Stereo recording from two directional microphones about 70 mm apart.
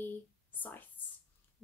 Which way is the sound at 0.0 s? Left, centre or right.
Left.